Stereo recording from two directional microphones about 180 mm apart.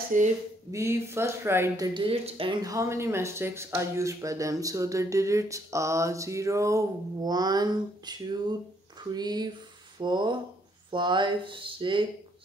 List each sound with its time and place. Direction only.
0.1 s speech: 45° right (ahead or behind)
0.7 s speech: 15° right (ahead or behind)
2.0 s speech: 30° right (ahead or behind)